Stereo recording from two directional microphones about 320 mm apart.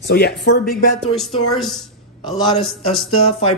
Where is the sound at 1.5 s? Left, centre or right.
Centre.